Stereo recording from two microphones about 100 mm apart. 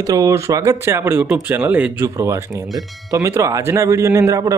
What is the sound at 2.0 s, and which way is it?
Speech, 30° right (ahead or behind).